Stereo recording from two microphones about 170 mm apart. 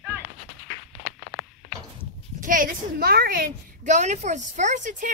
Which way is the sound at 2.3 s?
55° right (ahead or behind).